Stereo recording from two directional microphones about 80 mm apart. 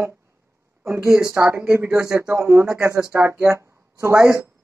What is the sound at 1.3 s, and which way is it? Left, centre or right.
A man's voice, right.